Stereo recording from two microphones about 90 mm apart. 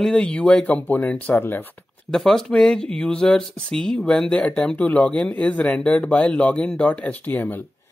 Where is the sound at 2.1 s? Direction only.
5° left (ahead or behind).